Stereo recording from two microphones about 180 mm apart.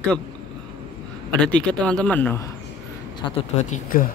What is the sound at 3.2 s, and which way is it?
Speech, 40° left (ahead or behind).